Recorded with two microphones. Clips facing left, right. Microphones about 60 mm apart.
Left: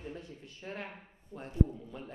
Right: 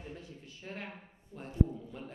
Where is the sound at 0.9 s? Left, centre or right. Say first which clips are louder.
Even; centre.